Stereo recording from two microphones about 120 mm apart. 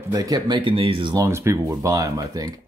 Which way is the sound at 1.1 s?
25° right (ahead or behind).